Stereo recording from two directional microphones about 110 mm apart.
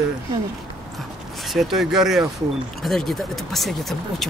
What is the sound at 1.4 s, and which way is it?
Speech, centre (ahead or behind).